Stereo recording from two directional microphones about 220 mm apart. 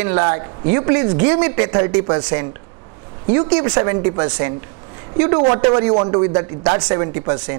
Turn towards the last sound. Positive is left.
turn(degrees=-20)  # may be behind; listen again after turning